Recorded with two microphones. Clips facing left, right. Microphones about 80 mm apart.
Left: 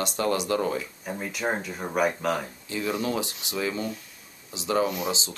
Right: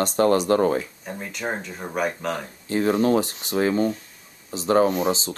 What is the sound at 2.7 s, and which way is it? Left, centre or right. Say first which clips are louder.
Speech: right 8 dB; right.